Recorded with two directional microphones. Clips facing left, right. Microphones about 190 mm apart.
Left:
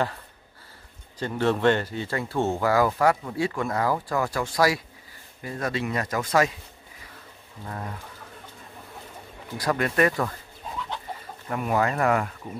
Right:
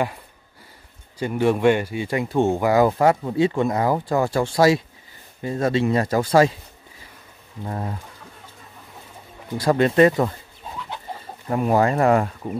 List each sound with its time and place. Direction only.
1.2 s speech: 10° right (ahead or behind); by 6.5 s 30° right (ahead or behind)
7.6 s speech: 30° right (ahead or behind)
9.6 s speech: 25° right (ahead or behind)
11.4 s speech: 30° right (ahead or behind)